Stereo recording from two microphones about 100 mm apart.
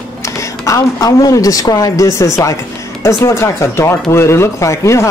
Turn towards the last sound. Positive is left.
turn(degrees=30)  # may be behind; listen again after turning